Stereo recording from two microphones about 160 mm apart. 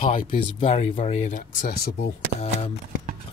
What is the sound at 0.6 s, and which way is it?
Speech, 40° left (ahead or behind).